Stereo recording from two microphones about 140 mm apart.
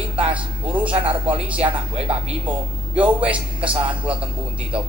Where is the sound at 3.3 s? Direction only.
10° right (ahead or behind).